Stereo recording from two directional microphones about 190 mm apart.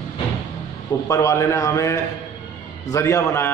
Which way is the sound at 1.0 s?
15° left (ahead or behind).